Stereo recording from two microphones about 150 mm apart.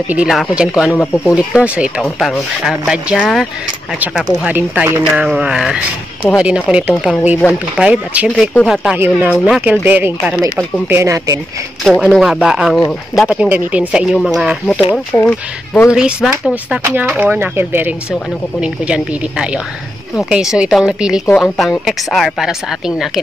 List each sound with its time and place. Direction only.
0.1 s speech: 5° right (ahead or behind)
0.9 s speech: 10° left (ahead or behind)
1.3 s speech: 5° right (ahead or behind)
5.1 s speech: 5° right (ahead or behind)
9.3 s speech: centre (ahead or behind)
9.7 s speech: 10° right (ahead or behind)
11.8 s speech: centre (ahead or behind)
15.1 s speech: 10° left (ahead or behind)
15.9 s speech: 5° right (ahead or behind)